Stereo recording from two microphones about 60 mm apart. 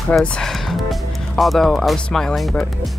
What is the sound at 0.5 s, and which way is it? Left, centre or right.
Speech, centre.